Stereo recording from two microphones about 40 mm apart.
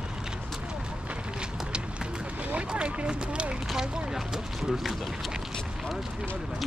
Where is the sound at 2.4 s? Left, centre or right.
Right.